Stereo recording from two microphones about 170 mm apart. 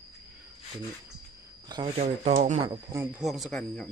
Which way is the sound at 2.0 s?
40° right (ahead or behind).